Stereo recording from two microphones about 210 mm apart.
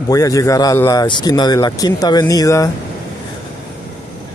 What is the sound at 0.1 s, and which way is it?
A man's voice, 15° left (ahead or behind).